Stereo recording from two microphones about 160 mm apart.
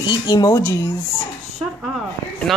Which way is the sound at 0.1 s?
25° left (ahead or behind).